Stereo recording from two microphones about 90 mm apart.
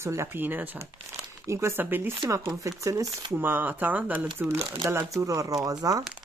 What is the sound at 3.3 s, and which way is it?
Speech, 20° right (ahead or behind).